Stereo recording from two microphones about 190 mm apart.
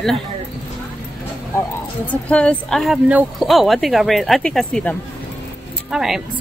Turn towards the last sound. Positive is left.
turn(degrees=0)  # may be behind; listen again after turning